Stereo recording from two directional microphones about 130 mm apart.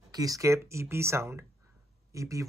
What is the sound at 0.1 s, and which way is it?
Speech, 30° right (ahead or behind).